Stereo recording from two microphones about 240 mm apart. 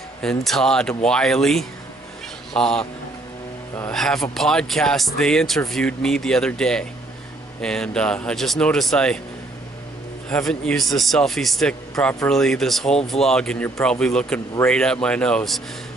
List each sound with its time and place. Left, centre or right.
0.2 s speech: centre
10.3 s speech: centre